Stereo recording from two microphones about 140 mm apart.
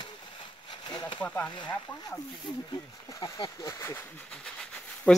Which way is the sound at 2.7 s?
25° left (ahead or behind).